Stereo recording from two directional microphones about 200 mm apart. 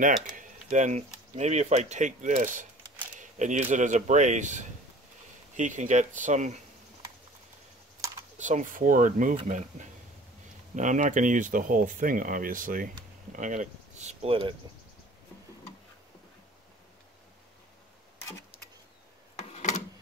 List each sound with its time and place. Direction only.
0.4 s speech: 40° right (ahead or behind)
3.2 s single-lens reflex camera: 40° right (ahead or behind)
3.7 s speech: 35° right (ahead or behind)
8.0 s typing: 15° right (ahead or behind)
8.4 s speech: 40° right (ahead or behind)
10.8 s speech: 40° right (ahead or behind)
19.3 s a sound: 35° left (ahead or behind)